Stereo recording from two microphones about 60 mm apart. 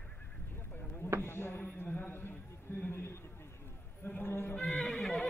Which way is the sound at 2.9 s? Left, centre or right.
Left.